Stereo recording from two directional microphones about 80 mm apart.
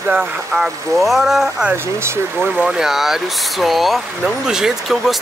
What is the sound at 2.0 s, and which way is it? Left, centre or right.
Speech, right.